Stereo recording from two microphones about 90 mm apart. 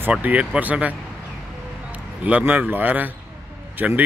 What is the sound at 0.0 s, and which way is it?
Speech, 15° right (ahead or behind).